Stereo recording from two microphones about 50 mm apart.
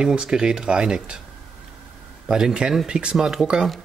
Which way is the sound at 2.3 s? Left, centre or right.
Centre.